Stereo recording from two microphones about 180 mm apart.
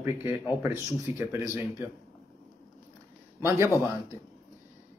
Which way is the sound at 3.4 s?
15° right (ahead or behind).